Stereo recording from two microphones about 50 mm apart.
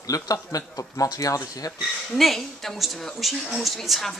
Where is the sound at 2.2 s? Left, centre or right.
Centre.